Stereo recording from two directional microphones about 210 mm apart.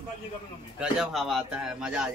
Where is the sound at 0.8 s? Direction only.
Centre (ahead or behind).